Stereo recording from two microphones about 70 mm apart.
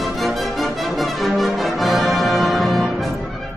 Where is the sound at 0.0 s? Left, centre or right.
Centre.